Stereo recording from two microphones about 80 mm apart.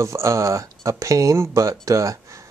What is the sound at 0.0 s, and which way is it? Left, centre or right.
Speech, right.